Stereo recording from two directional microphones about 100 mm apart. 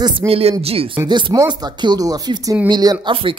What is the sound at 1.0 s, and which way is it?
Speech, 50° right (ahead or behind).